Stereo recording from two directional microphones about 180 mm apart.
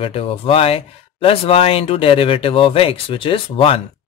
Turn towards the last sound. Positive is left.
turn(degrees=30)  # may be behind; listen again after turning